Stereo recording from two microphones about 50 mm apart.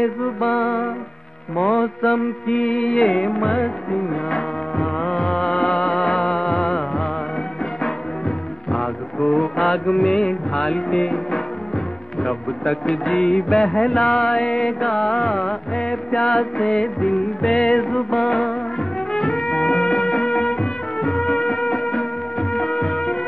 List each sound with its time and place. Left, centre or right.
0.0 s music: centre
3.2 s music: centre
4.3 s music: centre
8.6 s music: centre
14.5 s mantra: centre
14.8 s music: centre
19.8 s music: left
20.3 s music: centre
21.7 s music of bollywood: centre